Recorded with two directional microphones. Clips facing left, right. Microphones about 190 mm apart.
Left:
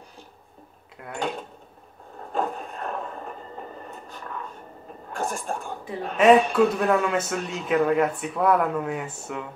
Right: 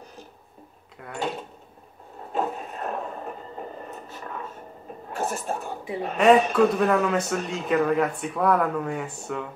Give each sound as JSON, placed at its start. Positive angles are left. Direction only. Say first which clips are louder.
{"t": 1.0, "sound": "a man's voice", "louder": "even", "side_deg": 0}
{"t": 2.3, "sound": "a sound", "louder": "even", "side_deg": -5}
{"t": 5.1, "sound": "a man's voice", "louder": "right 1 dB", "side_deg": -5}